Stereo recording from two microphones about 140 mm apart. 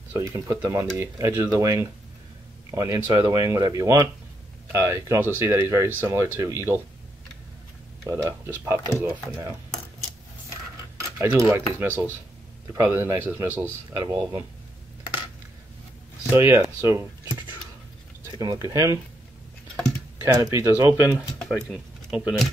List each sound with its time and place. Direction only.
0.2 s speech: 20° right (ahead or behind)
8.1 s speech: 20° right (ahead or behind)
11.1 s a man's voice: 20° right (ahead or behind)
16.3 s a man's voice: 15° right (ahead or behind)
18.3 s speech: 30° right (ahead or behind)
20.3 s speech: 20° right (ahead or behind)
21.5 s speech: centre (ahead or behind)